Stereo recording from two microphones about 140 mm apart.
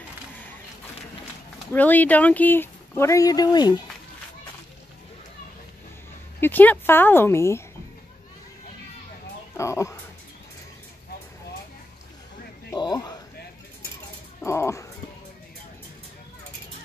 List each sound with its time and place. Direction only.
1.7 s speech: 10° left (ahead or behind); by 3.8 s 30° left (ahead or behind)
6.4 s speech: 10° left (ahead or behind)
9.6 s speech: 20° left (ahead or behind)
12.7 s a sound: 30° left (ahead or behind)
14.4 s music: 20° left (ahead or behind)